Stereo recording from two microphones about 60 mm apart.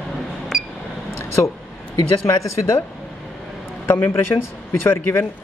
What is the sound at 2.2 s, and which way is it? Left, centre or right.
Speech, left.